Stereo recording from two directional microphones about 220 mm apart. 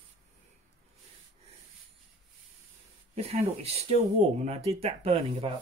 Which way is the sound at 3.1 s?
30° right (ahead or behind).